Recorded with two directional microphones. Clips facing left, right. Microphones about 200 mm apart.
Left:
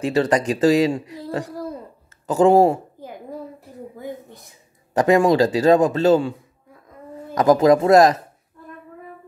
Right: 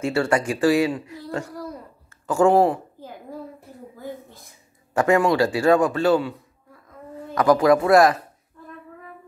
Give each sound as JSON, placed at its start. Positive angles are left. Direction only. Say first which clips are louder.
{"t": 0.0, "sound": "speech", "louder": "left 2 dB", "side_deg": 20}
{"t": 1.1, "sound": "a sound", "louder": "left 3 dB", "side_deg": 20}
{"t": 4.9, "sound": "speech", "louder": "left 3 dB", "side_deg": 15}
{"t": 5.2, "sound": "speech", "louder": "left 3 dB", "side_deg": 40}
{"t": 5.5, "sound": "speech", "louder": "left 3 dB", "side_deg": 20}
{"t": 7.3, "sound": "speech", "louder": "left 2 dB", "side_deg": 20}